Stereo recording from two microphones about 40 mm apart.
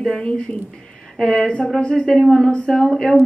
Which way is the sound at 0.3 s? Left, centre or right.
Left.